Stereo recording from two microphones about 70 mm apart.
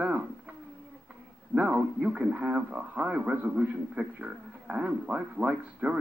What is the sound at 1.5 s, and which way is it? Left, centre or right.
Speech, right.